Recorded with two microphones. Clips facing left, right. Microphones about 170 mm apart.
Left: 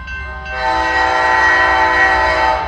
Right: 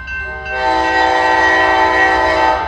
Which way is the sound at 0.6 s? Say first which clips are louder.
Right 3 dB; 25° right (ahead or behind).